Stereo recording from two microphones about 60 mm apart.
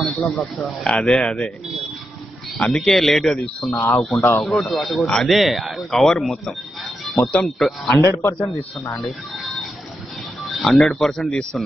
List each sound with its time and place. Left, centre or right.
0.0 s speech: centre
2.7 s speech: centre
5.0 s speech: centre
5.3 s speech: centre
7.4 s speech: centre
8.0 s a man's voice: left
10.4 s speech: centre